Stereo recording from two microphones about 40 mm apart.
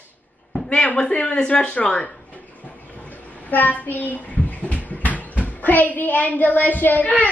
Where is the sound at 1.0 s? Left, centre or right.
Left.